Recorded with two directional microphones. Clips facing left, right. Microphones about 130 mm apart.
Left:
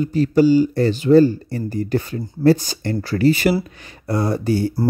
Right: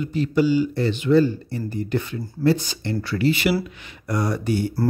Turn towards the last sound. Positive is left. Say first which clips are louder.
# left 4 dB
turn(degrees=35)  # may be behind; listen again after turning